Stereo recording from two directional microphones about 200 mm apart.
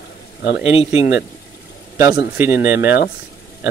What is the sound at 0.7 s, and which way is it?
Speech, 30° left (ahead or behind).